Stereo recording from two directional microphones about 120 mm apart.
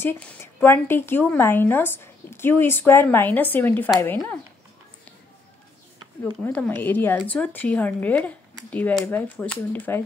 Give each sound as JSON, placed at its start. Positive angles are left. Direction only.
{"t": 0.0, "sound": "a woman's voice", "side_deg": 15}
{"t": 6.4, "sound": "a woman's voice", "side_deg": 15}